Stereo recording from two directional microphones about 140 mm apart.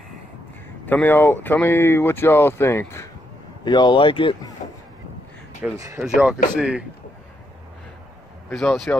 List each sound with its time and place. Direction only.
0.8 s speech: 15° left (ahead or behind)
3.6 s speech: 30° left (ahead or behind)
5.6 s speech: 20° right (ahead or behind)
6.0 s speech: 5° right (ahead or behind)
8.5 s speech: 5° left (ahead or behind)